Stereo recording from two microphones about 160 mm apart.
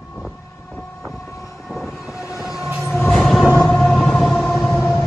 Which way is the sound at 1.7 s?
5° right (ahead or behind).